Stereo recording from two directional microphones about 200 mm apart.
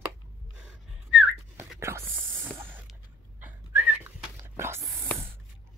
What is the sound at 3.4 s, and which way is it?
Whistling, 10° right (ahead or behind).